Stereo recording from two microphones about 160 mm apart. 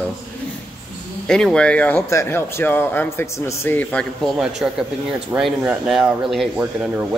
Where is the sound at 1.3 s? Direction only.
5° left (ahead or behind).